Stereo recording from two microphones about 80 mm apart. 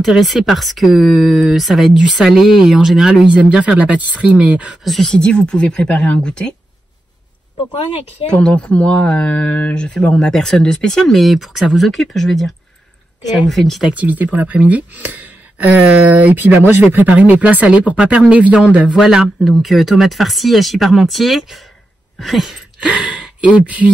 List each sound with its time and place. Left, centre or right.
0.0 s speech: centre
4.8 s speech: centre
8.3 s speech: centre
13.8 s speech: centre
22.2 s a sound: centre
22.8 s speech: centre